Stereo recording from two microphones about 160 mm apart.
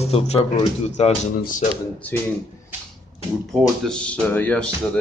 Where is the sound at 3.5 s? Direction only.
5° left (ahead or behind).